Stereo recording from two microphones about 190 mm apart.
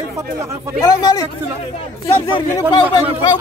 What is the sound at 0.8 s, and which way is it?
Speech, 20° left (ahead or behind).